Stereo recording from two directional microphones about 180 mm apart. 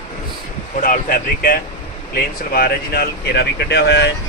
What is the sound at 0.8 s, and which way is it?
Speech, 50° left (ahead or behind).